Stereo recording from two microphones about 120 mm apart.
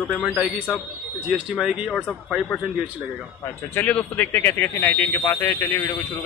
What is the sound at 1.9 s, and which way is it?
Speech, 5° left (ahead or behind).